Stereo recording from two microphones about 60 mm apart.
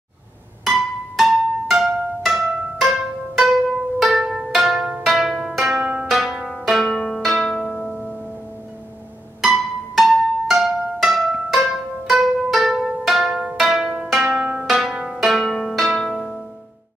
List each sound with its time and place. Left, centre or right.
0.7 s music: centre
5.0 s zither: centre
6.0 s pizzicato: centre
7.2 s music: centre
9.4 s music: centre
13.6 s pizzicato: centre
14.3 s zither: centre
14.7 s pizzicato: centre